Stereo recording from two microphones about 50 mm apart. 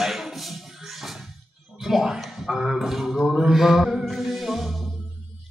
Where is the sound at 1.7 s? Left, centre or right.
Centre.